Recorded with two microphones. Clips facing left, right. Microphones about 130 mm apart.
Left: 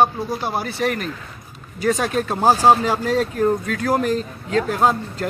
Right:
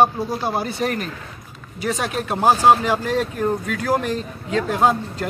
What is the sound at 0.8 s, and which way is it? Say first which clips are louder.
Speech: left 4 dB; 35° right (ahead or behind).